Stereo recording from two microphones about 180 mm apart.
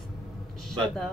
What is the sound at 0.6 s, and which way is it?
Speech, 5° left (ahead or behind).